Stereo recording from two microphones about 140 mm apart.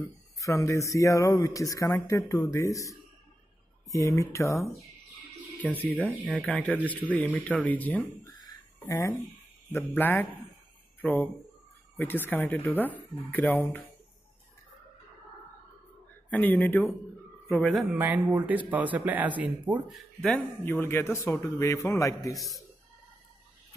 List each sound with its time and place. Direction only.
0.4 s speech: 20° left (ahead or behind)
5.6 s speech: 10° left (ahead or behind)
5.9 s speech: 10° right (ahead or behind)
6.2 s speech: 10° left (ahead or behind)
8.2 s a sound: 25° left (ahead or behind)
9.9 s speech: 15° left (ahead or behind)
16.3 s speech: 10° left (ahead or behind)
17.9 s speech: 10° right (ahead or behind)
19.9 s speech: 5° left (ahead or behind); by 22.3 s 25° left (ahead or behind)
22.3 s speech: centre (ahead or behind)